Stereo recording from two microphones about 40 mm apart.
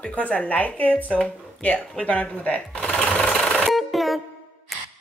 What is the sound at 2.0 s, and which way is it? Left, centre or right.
Speech, left.